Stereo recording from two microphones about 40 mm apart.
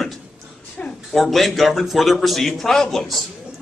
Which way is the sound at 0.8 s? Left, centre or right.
Left.